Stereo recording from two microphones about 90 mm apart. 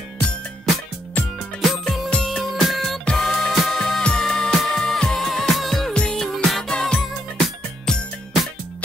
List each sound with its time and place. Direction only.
1.2 s music: 15° left (ahead or behind)
1.6 s music: centre (ahead or behind)